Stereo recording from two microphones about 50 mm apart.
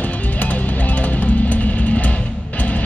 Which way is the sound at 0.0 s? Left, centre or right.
Left.